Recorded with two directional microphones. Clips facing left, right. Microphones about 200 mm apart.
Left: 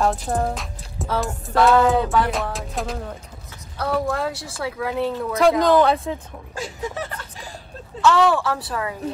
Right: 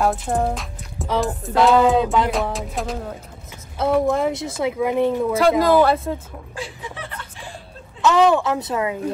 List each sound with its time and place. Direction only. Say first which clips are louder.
0.0 s music: right 1 dB; centre (ahead or behind)
1.7 s music: right 2 dB; 15° right (ahead or behind)
2.3 s music: right 3 dB; centre (ahead or behind)
3.7 s speech: right 5 dB; 20° right (ahead or behind)
5.4 s music: even; 5° right (ahead or behind)
6.5 s speech: left 4 dB; 45° left (ahead or behind)
8.0 s speech: right 2 dB; 20° right (ahead or behind)